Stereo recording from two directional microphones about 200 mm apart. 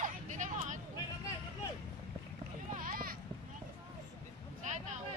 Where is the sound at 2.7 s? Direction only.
45° right (ahead or behind).